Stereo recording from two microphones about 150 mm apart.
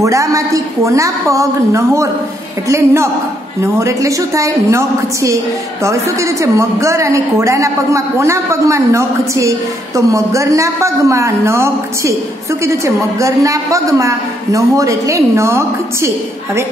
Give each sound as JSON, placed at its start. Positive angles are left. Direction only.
{"t": 0.0, "sound": "a woman's voice", "side_deg": -20}